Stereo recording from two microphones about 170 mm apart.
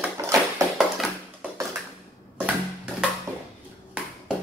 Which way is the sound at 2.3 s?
10° right (ahead or behind).